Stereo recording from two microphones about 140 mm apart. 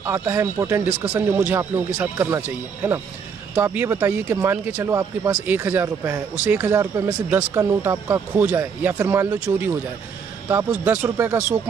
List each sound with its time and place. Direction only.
0.0 s speech: 15° right (ahead or behind)